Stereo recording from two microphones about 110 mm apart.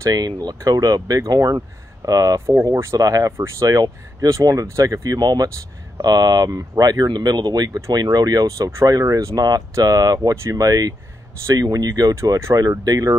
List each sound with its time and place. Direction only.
0.0 s speech: 35° right (ahead or behind)